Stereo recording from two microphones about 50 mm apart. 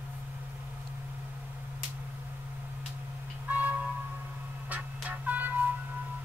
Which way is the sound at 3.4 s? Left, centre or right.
Right.